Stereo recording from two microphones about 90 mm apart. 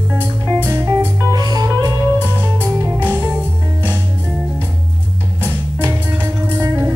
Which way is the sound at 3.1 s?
20° right (ahead or behind).